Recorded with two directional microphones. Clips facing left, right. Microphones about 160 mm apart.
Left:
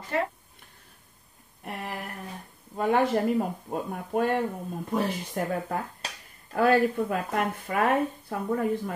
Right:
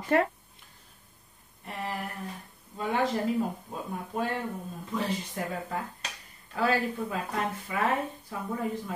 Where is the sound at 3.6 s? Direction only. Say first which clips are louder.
Left 5 dB; 60° left (ahead or behind).